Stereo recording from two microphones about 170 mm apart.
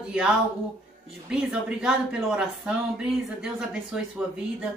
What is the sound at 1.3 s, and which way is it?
A woman's voice, 5° right (ahead or behind).